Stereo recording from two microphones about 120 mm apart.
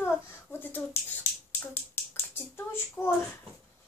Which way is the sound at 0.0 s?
15° left (ahead or behind).